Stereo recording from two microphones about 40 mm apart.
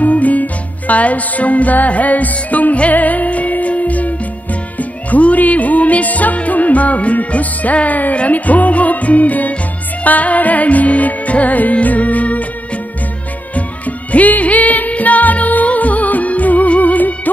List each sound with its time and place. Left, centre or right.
0.0 s music: left
13.6 s music: left